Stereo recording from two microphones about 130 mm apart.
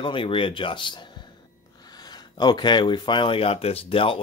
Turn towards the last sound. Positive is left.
turn(degrees=45)  # may be behind; listen again after turning